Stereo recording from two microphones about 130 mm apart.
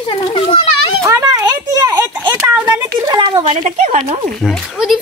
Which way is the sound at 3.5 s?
75° right (ahead or behind).